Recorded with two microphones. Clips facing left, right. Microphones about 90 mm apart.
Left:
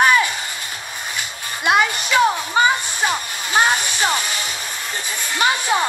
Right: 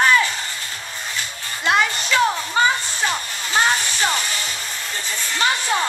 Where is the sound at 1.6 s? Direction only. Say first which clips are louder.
Left 2 dB; 15° left (ahead or behind).